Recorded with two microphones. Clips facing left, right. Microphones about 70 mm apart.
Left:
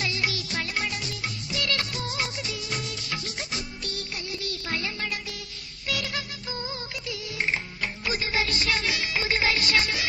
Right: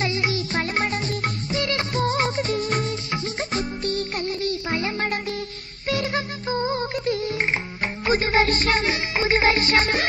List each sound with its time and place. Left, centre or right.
0.0 s music: right
4.6 s music: right
4.9 s music: right